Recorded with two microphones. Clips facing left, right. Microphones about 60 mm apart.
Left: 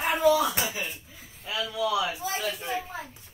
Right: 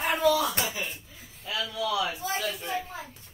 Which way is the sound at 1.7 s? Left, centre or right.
Centre.